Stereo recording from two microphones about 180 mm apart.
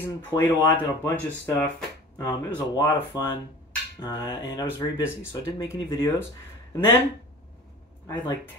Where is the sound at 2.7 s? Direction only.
25° left (ahead or behind).